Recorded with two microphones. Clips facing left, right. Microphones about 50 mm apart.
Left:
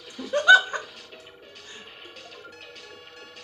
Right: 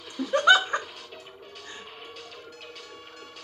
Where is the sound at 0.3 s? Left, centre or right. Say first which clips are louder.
Left 3 dB; right.